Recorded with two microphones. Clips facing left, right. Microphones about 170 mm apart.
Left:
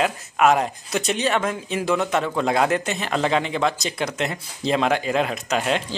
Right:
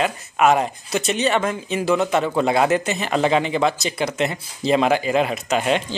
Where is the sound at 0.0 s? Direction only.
Centre (ahead or behind).